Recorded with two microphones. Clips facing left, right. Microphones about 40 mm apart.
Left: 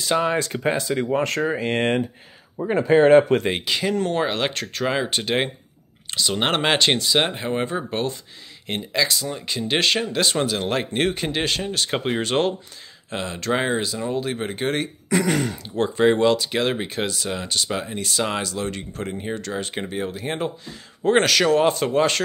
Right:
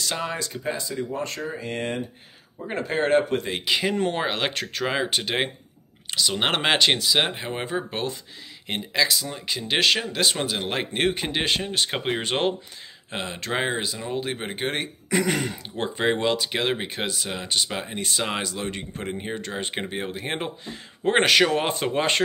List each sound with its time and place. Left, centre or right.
0.0 s speech: centre
0.4 s speech: left
3.6 s speech: centre
10.4 s speech: centre